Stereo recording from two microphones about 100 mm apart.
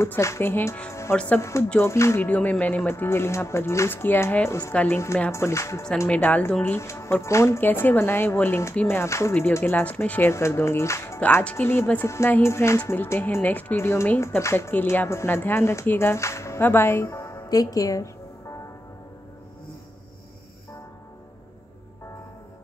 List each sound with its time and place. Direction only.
0.0 s a woman's voice: 30° left (ahead or behind)
1.8 s speech: 30° left (ahead or behind)
6.0 s a woman's voice: 15° left (ahead or behind); by 18.1 s 35° left (ahead or behind)